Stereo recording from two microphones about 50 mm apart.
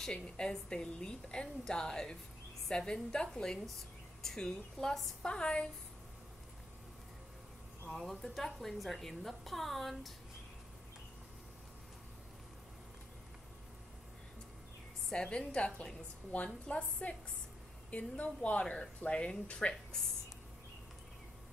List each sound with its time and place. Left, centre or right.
0.0 s a woman's voice: centre
5.2 s a woman's voice: centre
7.9 s a woman's voice: centre
15.1 s a woman's voice: centre